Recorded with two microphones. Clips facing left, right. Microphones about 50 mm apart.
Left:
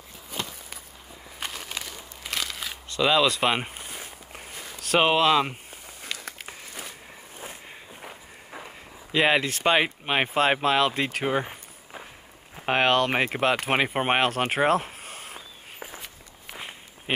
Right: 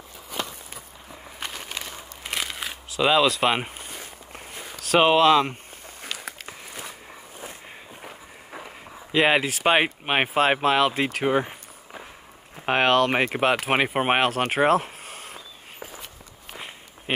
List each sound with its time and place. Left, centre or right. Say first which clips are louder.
1.4 s a sound: even; centre
1.7 s crumpling: right 1 dB; centre
2.9 s walk: right 2 dB; centre
4.7 s speech: right 3 dB; centre
7.3 s walk: even; centre
9.8 s speech: right 2 dB; centre
15.8 s walk: even; left